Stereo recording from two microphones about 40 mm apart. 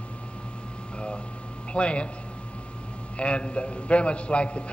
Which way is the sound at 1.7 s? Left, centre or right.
Left.